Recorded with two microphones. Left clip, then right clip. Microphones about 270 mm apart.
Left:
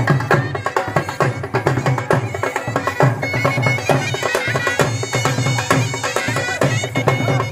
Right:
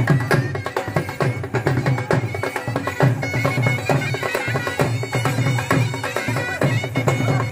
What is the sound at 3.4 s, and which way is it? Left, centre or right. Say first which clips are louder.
Bagpipes: left 4 dB; left.